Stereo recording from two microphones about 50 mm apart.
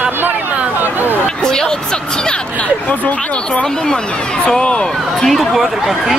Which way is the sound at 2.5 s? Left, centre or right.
Left.